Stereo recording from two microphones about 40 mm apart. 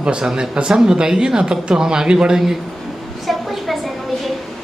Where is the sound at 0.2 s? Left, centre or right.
Centre.